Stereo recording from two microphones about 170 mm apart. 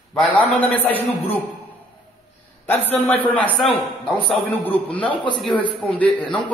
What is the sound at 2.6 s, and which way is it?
A man's voice, 10° left (ahead or behind).